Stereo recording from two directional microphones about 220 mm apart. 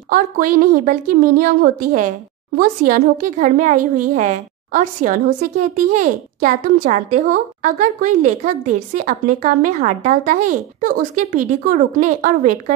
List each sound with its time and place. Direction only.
0.1 s a woman's voice: 40° right (ahead or behind)